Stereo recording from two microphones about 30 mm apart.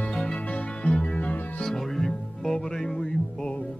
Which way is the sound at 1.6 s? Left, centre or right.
Centre.